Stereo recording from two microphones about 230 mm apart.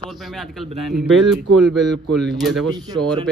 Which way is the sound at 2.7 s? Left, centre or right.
Centre.